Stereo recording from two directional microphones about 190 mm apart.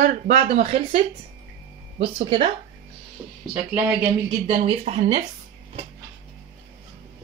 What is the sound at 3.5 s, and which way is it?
Speech, 10° right (ahead or behind).